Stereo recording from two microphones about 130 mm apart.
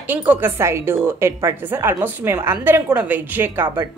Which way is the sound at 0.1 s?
15° right (ahead or behind).